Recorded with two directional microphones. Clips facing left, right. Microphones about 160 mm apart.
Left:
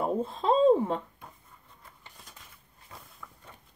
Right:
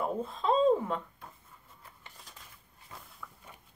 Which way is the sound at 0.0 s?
30° left (ahead or behind).